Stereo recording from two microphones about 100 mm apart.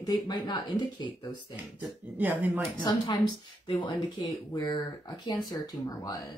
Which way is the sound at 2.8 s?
55° left (ahead or behind).